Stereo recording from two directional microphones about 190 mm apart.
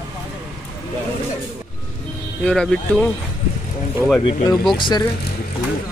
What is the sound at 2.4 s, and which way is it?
Speech, 5° left (ahead or behind).